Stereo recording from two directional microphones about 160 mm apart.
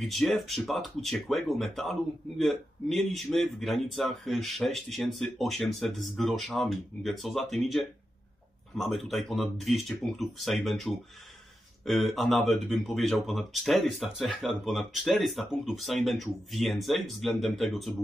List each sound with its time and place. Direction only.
0.0 s speech: centre (ahead or behind)